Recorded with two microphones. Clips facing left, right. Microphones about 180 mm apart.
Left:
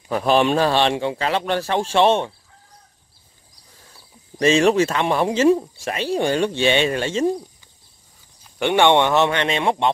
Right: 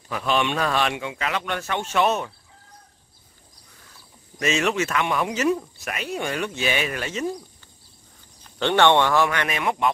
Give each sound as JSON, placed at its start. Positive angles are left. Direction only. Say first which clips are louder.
{"t": 0.1, "sound": "speech", "louder": "left 7 dB", "side_deg": 35}
{"t": 4.4, "sound": "speech", "louder": "left 8 dB", "side_deg": 30}
{"t": 8.5, "sound": "speech", "louder": "left 2 dB", "side_deg": 15}